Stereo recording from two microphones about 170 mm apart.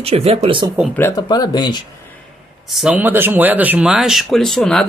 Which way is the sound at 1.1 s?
25° left (ahead or behind).